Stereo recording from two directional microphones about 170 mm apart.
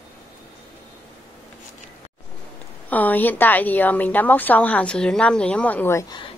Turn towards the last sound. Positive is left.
turn(degrees=10)  # may be behind; listen again after turning